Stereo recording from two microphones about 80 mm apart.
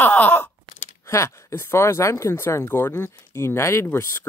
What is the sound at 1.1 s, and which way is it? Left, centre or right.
Speech, left.